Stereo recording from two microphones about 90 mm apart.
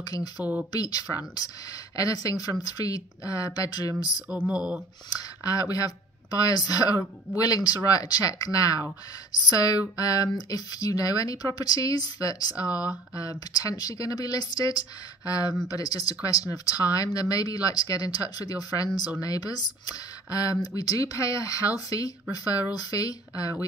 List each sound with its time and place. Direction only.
0.0 s speech: 45° left (ahead or behind)
0.4 s speech: 20° right (ahead or behind)
0.7 s speech: 45° left (ahead or behind)
4.5 s speech: 15° right (ahead or behind)
5.4 s speech: 40° left (ahead or behind)